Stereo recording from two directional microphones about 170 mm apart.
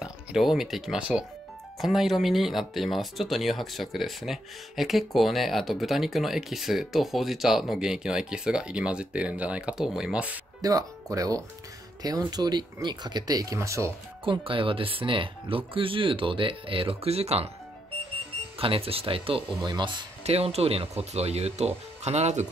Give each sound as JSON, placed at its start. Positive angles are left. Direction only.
{"t": 0.0, "sound": "speech", "side_deg": -5}
{"t": 10.6, "sound": "speech", "side_deg": -20}
{"t": 14.2, "sound": "speech", "side_deg": -30}
{"t": 18.6, "sound": "speech", "side_deg": -35}